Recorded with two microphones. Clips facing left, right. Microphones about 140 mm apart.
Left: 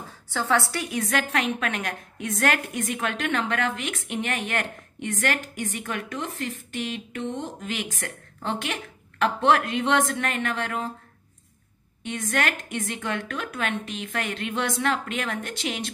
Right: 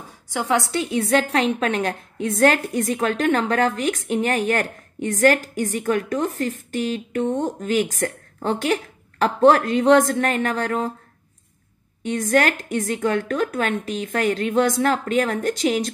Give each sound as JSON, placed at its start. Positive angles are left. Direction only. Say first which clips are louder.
{"t": 0.3, "sound": "a woman's voice", "louder": "right 3 dB", "side_deg": -15}
{"t": 12.0, "sound": "a woman's voice", "louder": "right 8 dB", "side_deg": -40}